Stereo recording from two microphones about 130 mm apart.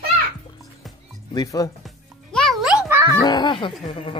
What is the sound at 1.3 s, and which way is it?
Speech, 30° left (ahead or behind).